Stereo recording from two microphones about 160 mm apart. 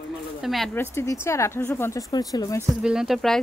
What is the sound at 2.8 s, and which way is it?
Speech, 5° right (ahead or behind).